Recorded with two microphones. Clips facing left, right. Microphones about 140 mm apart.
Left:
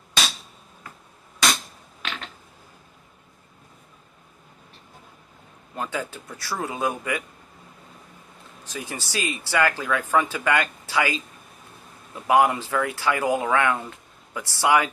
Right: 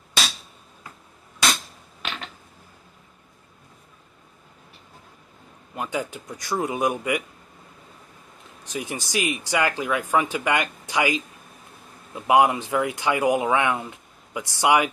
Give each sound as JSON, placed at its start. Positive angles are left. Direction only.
{"t": 5.8, "sound": "speech", "side_deg": -15}
{"t": 8.6, "sound": "speech", "side_deg": -15}